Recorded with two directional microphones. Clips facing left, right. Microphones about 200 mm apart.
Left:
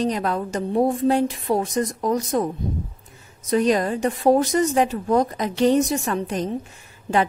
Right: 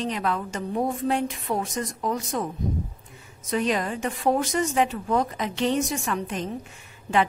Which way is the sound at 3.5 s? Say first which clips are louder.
Left 6 dB; 40° left (ahead or behind).